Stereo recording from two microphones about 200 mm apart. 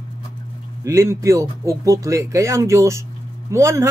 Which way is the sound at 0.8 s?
15° right (ahead or behind).